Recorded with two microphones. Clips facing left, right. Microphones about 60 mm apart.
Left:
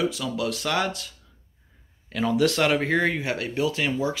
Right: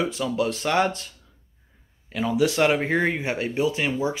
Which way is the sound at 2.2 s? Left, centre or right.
Centre.